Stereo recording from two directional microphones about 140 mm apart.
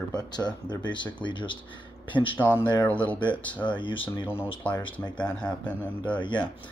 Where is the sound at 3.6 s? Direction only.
35° left (ahead or behind).